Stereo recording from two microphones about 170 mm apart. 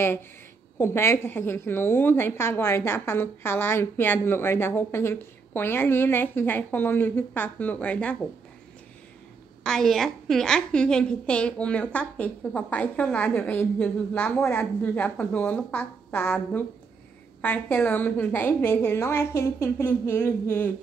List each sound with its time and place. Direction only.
0.7 s a woman's voice: 15° left (ahead or behind)
9.6 s a woman's voice: 5° left (ahead or behind)